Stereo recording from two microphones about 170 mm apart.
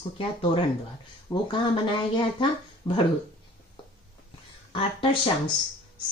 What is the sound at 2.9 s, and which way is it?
Speech, 30° left (ahead or behind).